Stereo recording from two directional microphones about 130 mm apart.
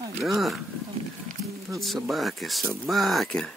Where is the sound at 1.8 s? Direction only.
Centre (ahead or behind).